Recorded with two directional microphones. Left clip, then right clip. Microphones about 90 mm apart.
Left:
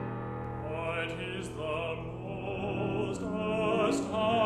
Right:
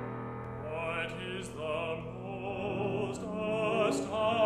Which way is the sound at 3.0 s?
40° right (ahead or behind).